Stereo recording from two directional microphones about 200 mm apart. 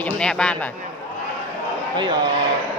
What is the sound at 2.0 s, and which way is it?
Speech, 25° right (ahead or behind).